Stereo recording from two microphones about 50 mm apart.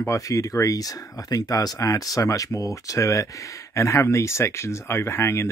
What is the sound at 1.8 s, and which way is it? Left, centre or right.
Speech, left.